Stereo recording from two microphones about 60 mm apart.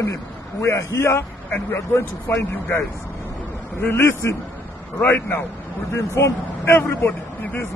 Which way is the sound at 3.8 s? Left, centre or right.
Left.